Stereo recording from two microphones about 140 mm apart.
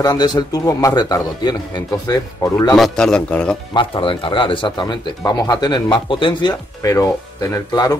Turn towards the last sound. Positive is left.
turn(degrees=25)  # may be behind; listen again after turning